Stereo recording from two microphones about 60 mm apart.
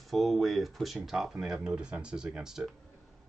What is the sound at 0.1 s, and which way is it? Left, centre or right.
Speech, centre.